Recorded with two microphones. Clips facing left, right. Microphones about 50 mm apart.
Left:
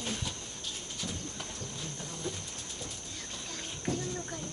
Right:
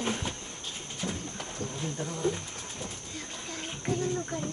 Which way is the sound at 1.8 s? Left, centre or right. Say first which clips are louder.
Right 11 dB; right.